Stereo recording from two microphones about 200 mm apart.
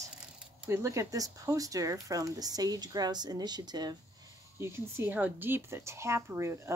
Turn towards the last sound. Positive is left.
turn(degrees=-15)  # may be behind; listen again after turning